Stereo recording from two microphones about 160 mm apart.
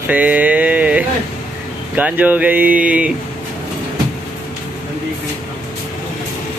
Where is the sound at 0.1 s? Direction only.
10° right (ahead or behind).